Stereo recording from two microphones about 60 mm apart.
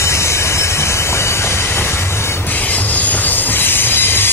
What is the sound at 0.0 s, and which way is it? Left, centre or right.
Train, left.